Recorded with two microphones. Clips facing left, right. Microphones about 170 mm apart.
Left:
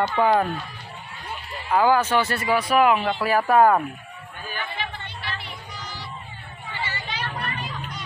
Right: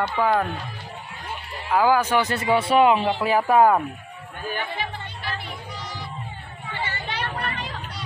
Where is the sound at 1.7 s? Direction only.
10° right (ahead or behind).